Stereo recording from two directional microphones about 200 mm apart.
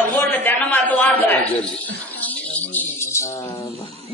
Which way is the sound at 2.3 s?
10° left (ahead or behind).